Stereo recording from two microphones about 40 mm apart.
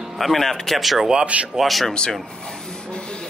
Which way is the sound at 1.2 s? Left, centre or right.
Right.